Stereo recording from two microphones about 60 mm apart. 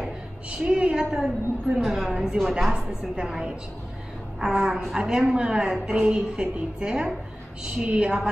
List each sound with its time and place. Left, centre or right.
0.5 s a woman's voice: centre